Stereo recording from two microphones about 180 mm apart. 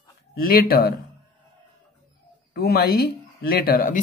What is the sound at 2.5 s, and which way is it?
Speech, 60° left (ahead or behind).